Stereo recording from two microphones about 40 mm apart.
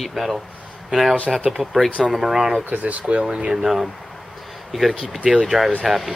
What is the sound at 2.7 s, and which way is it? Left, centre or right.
Speech, right.